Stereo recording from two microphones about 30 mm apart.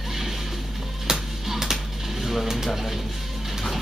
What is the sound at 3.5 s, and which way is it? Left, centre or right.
Music, centre.